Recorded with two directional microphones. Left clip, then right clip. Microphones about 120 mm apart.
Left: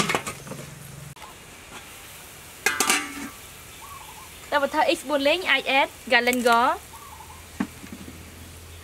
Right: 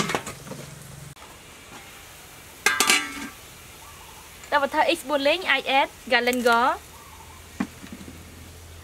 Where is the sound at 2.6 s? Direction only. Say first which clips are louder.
Right 3 dB; 15° right (ahead or behind).